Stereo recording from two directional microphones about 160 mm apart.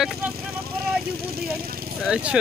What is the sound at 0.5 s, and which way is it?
Speech, 75° right (ahead or behind).